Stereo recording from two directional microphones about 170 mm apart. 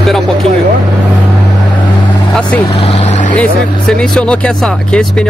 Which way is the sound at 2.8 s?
35° left (ahead or behind).